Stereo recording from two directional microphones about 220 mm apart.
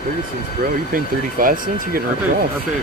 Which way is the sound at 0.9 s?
40° right (ahead or behind).